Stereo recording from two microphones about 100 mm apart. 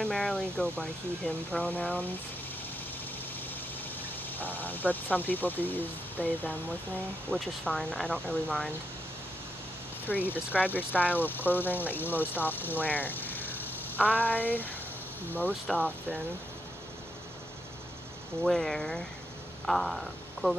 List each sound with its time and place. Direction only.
0.0 s speech: 10° left (ahead or behind)
4.3 s speech: 20° left (ahead or behind)
7.2 s speech: 5° left (ahead or behind)
10.0 s speech: 20° left (ahead or behind)
18.4 s speech: 5° left (ahead or behind)